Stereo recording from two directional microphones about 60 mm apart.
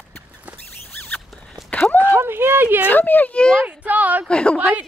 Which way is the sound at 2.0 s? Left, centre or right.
Right.